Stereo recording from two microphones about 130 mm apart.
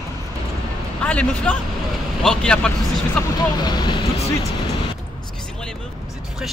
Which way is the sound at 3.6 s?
35° left (ahead or behind).